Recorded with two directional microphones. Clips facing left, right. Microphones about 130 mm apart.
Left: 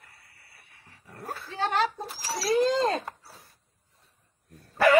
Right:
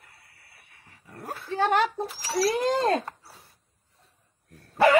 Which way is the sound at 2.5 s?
55° right (ahead or behind).